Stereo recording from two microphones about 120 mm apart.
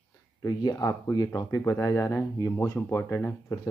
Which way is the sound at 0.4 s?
30° left (ahead or behind).